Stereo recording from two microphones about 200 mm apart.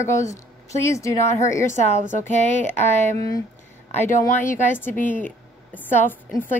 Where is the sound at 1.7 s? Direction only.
35° left (ahead or behind).